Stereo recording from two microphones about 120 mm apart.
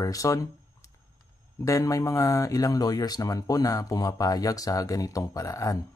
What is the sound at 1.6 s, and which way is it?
Speech, 25° left (ahead or behind).